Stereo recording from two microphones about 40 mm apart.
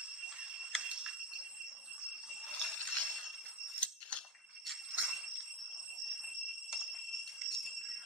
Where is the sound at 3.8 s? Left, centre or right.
Left.